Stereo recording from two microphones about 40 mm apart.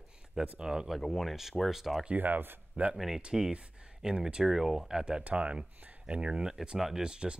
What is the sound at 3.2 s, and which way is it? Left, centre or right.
Speech, right.